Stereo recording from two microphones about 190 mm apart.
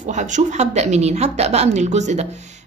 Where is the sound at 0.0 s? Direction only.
40° right (ahead or behind).